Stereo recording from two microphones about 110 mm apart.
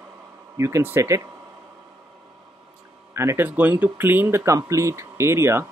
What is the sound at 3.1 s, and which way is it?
Speech, 20° right (ahead or behind).